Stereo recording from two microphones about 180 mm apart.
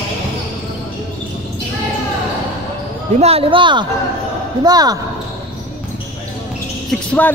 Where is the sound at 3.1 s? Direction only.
35° right (ahead or behind).